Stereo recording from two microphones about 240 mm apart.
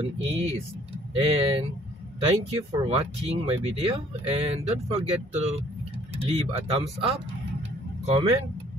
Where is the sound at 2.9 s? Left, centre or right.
Right.